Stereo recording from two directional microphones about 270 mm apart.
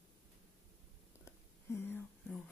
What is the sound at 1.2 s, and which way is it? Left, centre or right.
Whispering, centre.